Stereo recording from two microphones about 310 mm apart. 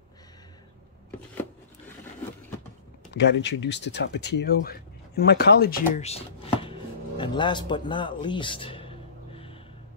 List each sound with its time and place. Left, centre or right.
3.1 s speech: left; by 9.6 s centre